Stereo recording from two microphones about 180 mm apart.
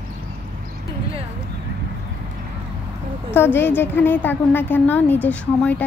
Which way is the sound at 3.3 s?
10° left (ahead or behind).